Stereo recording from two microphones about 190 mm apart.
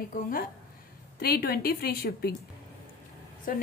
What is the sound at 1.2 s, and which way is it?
A woman's voice, 55° left (ahead or behind).